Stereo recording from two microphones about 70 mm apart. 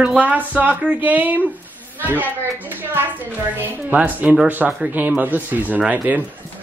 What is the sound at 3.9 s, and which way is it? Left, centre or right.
A man's voice, centre.